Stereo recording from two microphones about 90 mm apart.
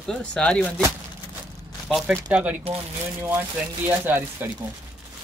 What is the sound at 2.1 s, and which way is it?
Speech, 15° right (ahead or behind).